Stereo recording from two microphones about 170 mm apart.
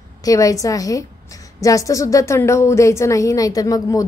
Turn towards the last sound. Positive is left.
turn(degrees=20)  # may be behind; listen again after turning